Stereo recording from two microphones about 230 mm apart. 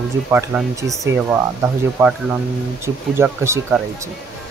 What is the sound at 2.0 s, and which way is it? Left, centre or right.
Speech, centre.